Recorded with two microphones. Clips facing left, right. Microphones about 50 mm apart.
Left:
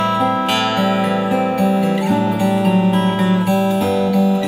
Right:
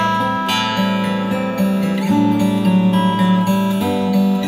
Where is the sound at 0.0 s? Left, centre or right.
Centre.